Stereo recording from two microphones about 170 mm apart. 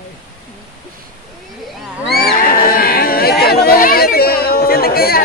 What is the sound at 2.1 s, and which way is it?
Speech, 65° left (ahead or behind).